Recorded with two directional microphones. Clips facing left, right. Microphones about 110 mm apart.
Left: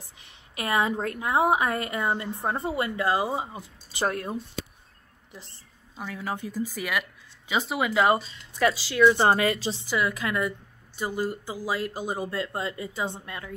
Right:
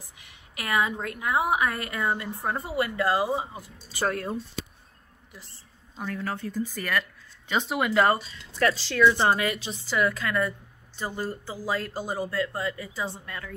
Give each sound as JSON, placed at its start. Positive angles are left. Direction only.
{"t": 0.2, "sound": "a woman's voice", "side_deg": 25}
{"t": 5.9, "sound": "a woman's voice", "side_deg": 10}
{"t": 9.2, "sound": "a woman's voice", "side_deg": 35}
{"t": 9.8, "sound": "a woman's voice", "side_deg": 10}